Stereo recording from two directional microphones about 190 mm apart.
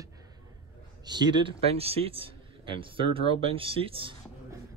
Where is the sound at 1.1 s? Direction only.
20° right (ahead or behind).